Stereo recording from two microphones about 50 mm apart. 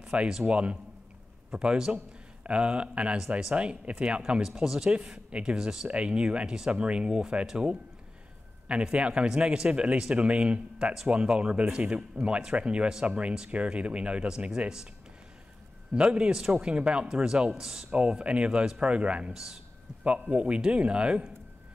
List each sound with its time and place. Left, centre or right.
0.0 s speech: centre
4.5 s speech: centre
5.6 s a man's voice: centre
5.9 s speech: right
15.9 s a man's voice: right
17.9 s speech: right